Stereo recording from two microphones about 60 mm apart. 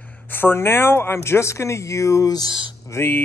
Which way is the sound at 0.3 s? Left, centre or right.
Left.